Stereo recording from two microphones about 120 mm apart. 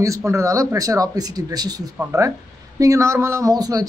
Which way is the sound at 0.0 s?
25° right (ahead or behind).